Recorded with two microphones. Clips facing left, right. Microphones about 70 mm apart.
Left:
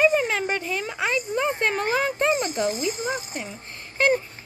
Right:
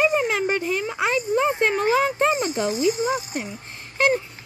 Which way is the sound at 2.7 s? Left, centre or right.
Left.